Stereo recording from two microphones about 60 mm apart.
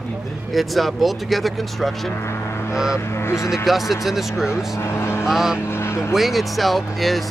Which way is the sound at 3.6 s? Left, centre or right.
Centre.